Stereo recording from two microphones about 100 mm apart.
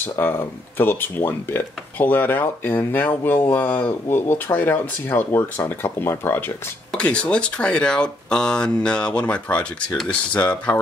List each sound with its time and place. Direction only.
0.0 s speech: 20° left (ahead or behind)